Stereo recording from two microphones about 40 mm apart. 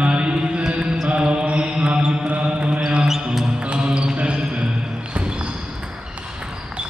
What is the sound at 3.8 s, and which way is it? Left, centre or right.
Basketball bounce, right.